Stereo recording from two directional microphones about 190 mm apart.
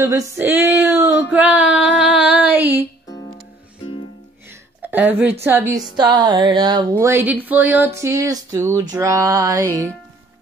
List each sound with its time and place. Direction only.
0.0 s speech: 15° right (ahead or behind)
3.1 s music: 20° left (ahead or behind)
4.8 s a woman's voice: 10° right (ahead or behind)